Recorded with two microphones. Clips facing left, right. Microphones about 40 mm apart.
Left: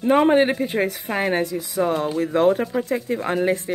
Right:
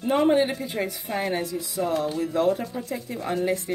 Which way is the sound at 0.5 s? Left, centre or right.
Left.